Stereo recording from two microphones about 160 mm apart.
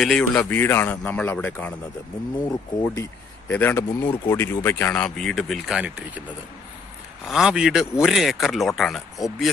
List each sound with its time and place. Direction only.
0.0 s a man's voice: 5° left (ahead or behind)
7.2 s speech: 5° right (ahead or behind)